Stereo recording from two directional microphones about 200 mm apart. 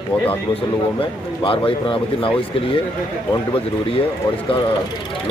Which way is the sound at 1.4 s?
25° left (ahead or behind).